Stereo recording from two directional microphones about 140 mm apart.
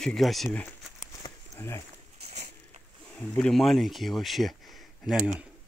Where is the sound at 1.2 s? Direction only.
20° left (ahead or behind).